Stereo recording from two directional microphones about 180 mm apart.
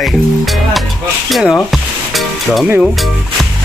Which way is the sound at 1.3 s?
Centre (ahead or behind).